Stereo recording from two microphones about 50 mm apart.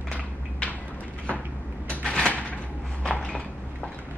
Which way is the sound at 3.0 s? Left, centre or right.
Left.